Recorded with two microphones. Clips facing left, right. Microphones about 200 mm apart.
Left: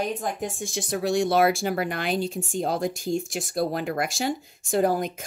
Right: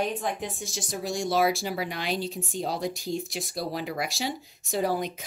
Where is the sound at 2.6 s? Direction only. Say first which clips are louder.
Left 5 dB; 50° left (ahead or behind).